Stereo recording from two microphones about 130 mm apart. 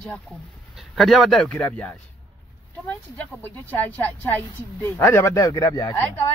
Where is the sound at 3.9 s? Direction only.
10° left (ahead or behind); by 5.9 s 30° left (ahead or behind).